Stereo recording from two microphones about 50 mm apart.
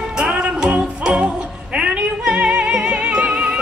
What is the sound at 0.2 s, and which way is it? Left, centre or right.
Music, centre.